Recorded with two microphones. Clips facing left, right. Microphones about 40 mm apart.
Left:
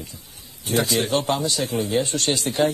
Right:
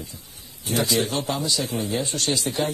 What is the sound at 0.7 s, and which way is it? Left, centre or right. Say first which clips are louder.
A man's voice: left 2 dB; left.